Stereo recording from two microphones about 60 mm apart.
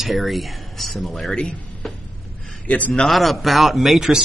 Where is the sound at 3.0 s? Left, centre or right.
Centre.